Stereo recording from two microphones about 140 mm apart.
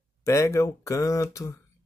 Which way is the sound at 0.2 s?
20° left (ahead or behind).